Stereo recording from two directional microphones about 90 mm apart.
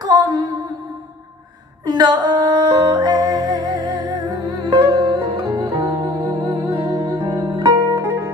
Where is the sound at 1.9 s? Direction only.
50° right (ahead or behind).